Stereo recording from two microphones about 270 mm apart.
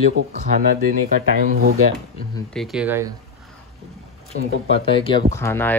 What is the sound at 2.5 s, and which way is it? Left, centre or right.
Speech, centre.